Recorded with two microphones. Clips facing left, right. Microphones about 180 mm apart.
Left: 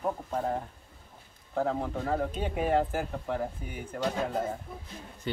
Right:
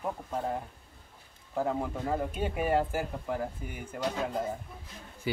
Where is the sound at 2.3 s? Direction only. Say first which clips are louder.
Left 1 dB; 10° right (ahead or behind).